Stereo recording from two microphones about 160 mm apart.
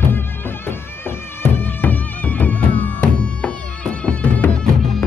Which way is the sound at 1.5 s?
10° left (ahead or behind).